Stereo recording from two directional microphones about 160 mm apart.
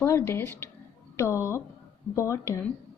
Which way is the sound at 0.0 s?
15° left (ahead or behind).